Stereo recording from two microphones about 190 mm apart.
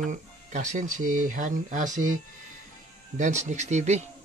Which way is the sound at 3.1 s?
40° right (ahead or behind).